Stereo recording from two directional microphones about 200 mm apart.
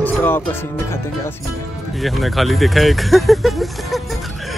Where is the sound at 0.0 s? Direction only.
10° left (ahead or behind).